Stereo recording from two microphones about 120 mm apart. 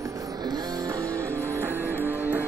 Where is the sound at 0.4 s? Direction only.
35° right (ahead or behind).